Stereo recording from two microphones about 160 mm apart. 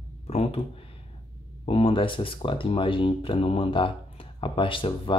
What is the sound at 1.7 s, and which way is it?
Speech, 35° left (ahead or behind).